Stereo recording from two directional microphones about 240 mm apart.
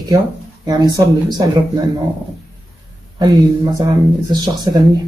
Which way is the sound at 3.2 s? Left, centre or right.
Centre.